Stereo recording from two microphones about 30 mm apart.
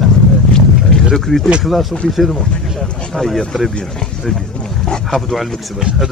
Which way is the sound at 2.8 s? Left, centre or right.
Left.